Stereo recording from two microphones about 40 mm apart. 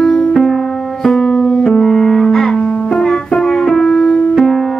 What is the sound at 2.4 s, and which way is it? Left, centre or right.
Music, left.